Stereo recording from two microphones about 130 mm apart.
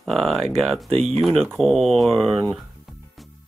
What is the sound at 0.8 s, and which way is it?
Speech, 55° right (ahead or behind).